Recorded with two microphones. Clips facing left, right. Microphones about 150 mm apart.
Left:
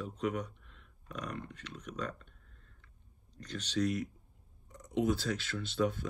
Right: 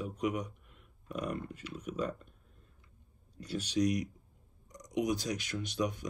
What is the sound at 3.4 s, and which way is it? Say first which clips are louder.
Speech: right 2 dB; 10° right (ahead or behind).